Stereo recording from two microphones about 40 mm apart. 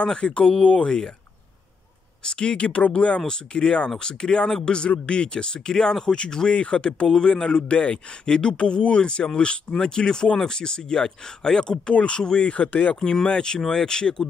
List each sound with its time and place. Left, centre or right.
0.0 s speech: left
2.2 s speech: left
3.3 s speech: left
11.9 s speech: left
13.0 s speech: centre